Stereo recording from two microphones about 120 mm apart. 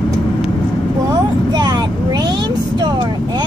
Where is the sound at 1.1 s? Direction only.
35° right (ahead or behind).